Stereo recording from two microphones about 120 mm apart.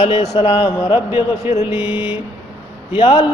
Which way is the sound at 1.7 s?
10° right (ahead or behind).